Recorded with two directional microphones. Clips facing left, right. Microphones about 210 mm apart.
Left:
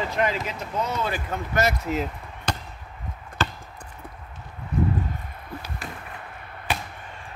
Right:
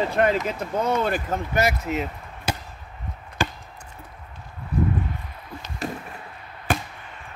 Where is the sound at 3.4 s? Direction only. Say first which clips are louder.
Right 1 dB; 10° right (ahead or behind).